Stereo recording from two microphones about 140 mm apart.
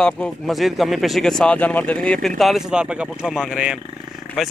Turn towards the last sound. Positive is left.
turn(degrees=0)  # may be behind; listen again after turning